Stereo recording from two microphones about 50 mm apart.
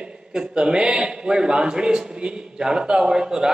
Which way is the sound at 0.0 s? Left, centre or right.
Centre.